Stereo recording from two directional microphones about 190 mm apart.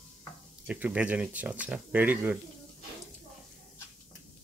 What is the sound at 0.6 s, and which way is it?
Speech, 5° right (ahead or behind).